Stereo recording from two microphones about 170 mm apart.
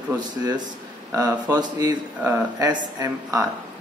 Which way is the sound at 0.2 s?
25° right (ahead or behind).